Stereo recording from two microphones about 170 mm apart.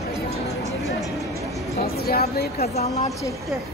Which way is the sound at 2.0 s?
65° left (ahead or behind).